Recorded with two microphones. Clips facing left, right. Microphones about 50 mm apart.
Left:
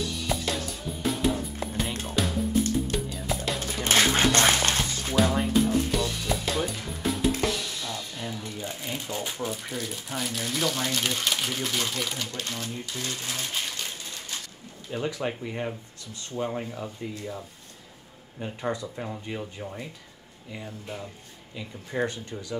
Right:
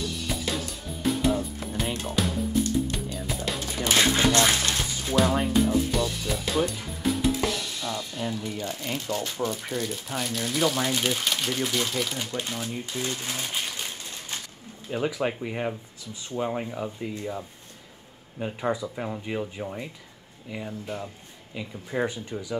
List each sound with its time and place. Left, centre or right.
0.0 s music: centre
3.8 s music: left
5.1 s music: centre
8.5 s speech: centre
9.5 s speech: centre
12.2 s speech: centre